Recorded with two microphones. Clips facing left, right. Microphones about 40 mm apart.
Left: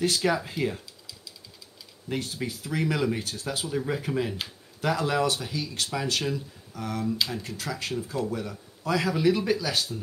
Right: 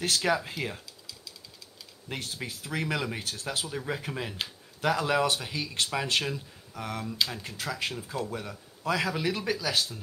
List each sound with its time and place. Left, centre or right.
0.0 s speech: centre
2.1 s speech: centre
5.2 s speech: right
7.1 s speech: centre
7.4 s speech: centre